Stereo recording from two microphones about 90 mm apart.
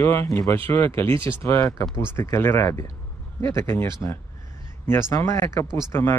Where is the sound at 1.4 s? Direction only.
30° left (ahead or behind).